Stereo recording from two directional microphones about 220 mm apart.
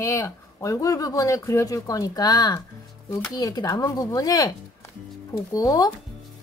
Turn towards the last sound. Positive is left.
turn(degrees=15)  # may be behind; listen again after turning